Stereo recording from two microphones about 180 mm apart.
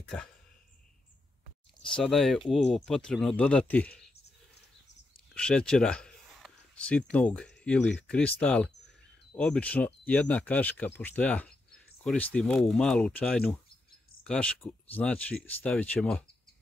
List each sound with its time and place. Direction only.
1.8 s speech: 5° left (ahead or behind)
5.3 s a sound: 5° left (ahead or behind)
8.1 s speech: 5° left (ahead or behind)